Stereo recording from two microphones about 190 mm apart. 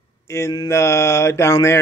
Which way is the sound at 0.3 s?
15° left (ahead or behind).